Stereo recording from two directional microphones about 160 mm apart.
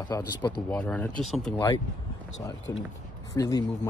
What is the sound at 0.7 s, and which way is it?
Speech, 10° left (ahead or behind).